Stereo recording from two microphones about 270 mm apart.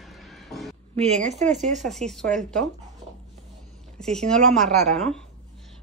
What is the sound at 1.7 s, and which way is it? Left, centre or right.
Speech, centre.